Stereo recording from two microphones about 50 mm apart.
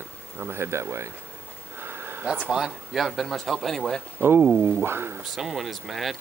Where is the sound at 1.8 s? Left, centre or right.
Right.